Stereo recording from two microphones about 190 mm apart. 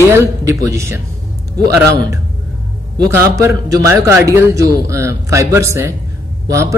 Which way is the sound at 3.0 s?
15° right (ahead or behind).